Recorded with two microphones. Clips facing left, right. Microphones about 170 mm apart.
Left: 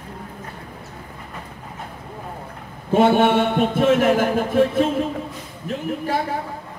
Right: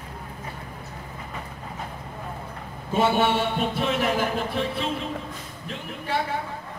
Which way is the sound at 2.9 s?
55° left (ahead or behind).